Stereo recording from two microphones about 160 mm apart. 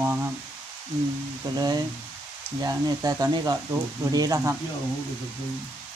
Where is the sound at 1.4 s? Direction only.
25° right (ahead or behind).